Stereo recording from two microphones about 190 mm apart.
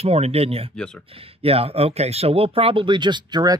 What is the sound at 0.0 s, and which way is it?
Speech, 35° right (ahead or behind).